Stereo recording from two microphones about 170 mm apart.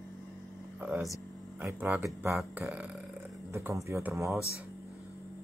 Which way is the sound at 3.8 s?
15° right (ahead or behind).